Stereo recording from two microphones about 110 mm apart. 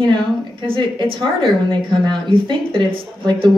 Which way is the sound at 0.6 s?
50° right (ahead or behind).